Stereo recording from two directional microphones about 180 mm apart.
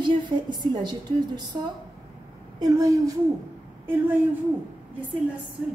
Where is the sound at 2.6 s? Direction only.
20° right (ahead or behind).